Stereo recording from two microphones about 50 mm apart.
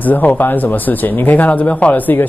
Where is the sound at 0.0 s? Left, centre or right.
Left.